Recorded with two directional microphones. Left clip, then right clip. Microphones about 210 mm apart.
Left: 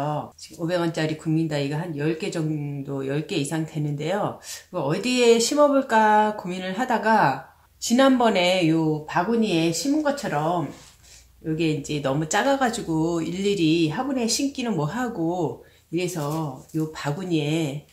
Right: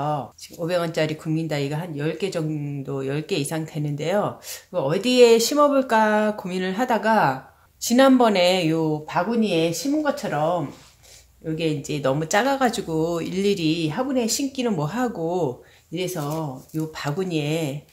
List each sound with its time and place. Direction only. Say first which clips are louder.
0.7 s speech: right 2 dB; 45° right (ahead or behind)
11.5 s speech: even; 45° right (ahead or behind)